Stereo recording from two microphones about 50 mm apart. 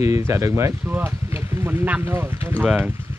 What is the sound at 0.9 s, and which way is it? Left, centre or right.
Speech, right.